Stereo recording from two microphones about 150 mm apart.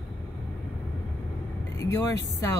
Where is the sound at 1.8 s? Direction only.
20° left (ahead or behind).